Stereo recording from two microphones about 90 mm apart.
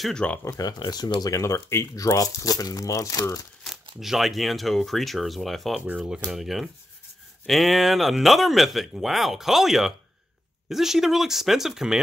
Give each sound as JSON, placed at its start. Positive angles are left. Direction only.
{"t": 0.0, "sound": "speech", "side_deg": 10}
{"t": 0.4, "sound": "speech", "side_deg": 40}
{"t": 1.3, "sound": "speech", "side_deg": 35}
{"t": 4.0, "sound": "speech", "side_deg": 0}
{"t": 5.8, "sound": "speech", "side_deg": -15}